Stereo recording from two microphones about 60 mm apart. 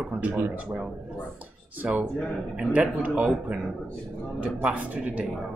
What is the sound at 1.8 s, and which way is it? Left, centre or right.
Speech, right.